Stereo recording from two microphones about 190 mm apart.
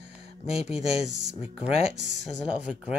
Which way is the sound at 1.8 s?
65° right (ahead or behind).